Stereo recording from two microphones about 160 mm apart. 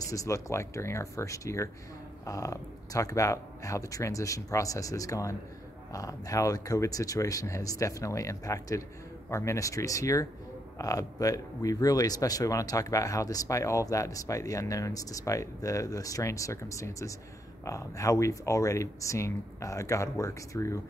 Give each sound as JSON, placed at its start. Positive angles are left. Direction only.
{"t": 0.1, "sound": "speech", "side_deg": 20}